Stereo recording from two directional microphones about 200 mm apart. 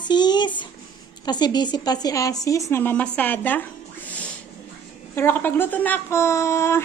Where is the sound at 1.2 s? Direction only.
20° left (ahead or behind).